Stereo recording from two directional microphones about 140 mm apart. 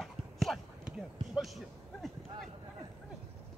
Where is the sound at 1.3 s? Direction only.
Centre (ahead or behind).